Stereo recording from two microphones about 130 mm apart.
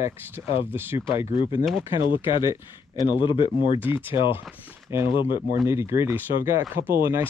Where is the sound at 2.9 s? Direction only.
35° left (ahead or behind).